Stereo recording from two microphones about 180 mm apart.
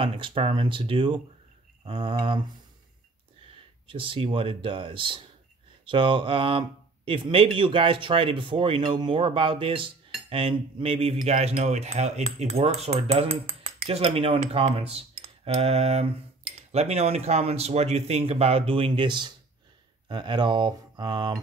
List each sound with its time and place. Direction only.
0.0 s speech: 30° right (ahead or behind)
3.8 s speech: 30° right (ahead or behind)